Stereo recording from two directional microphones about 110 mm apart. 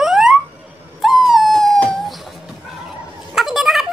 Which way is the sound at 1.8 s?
5° left (ahead or behind).